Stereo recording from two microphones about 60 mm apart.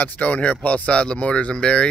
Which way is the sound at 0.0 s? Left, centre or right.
Left.